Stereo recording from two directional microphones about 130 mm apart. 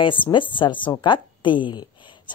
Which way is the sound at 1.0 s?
40° left (ahead or behind).